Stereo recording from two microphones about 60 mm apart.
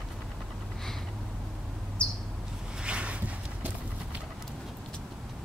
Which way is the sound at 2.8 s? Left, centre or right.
Centre.